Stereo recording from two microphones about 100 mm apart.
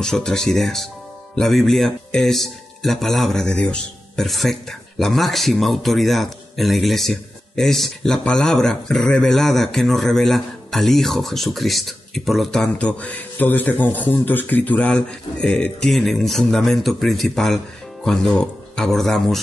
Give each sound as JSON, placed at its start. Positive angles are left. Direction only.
{"t": 0.0, "sound": "speech", "side_deg": 5}